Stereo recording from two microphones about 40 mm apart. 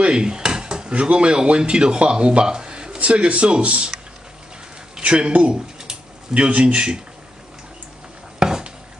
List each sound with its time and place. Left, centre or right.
0.0 s speech: right
5.0 s speech: right
8.4 s dishes: centre